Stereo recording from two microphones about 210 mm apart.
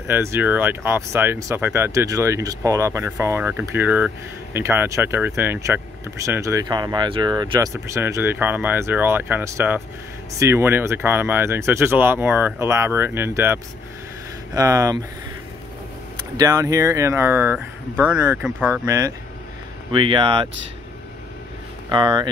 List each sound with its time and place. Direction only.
0.0 s speech: 10° right (ahead or behind)
16.3 s speech: 15° right (ahead or behind)
19.9 s speech: 25° right (ahead or behind)
21.8 s speech: 20° right (ahead or behind)